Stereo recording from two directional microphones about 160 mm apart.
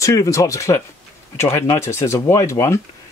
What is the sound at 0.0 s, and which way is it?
Speech, 20° left (ahead or behind).